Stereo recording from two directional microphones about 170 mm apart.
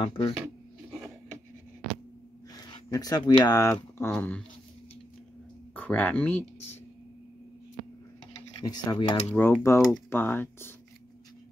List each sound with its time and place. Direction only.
0.0 s speech: 30° left (ahead or behind)
2.5 s speech: 20° left (ahead or behind)
3.6 s speech: 10° left (ahead or behind)
5.8 s speech: 10° left (ahead or behind)
8.6 s speech: 25° left (ahead or behind)
9.3 s speech: 10° left (ahead or behind)